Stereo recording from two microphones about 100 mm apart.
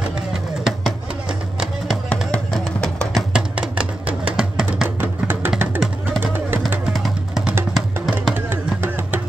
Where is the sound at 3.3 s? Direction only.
10° right (ahead or behind).